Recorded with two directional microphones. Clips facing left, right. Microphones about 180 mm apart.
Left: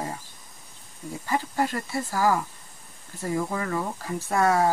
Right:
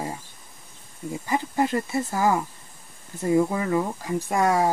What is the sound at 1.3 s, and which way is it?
Speech, 20° right (ahead or behind).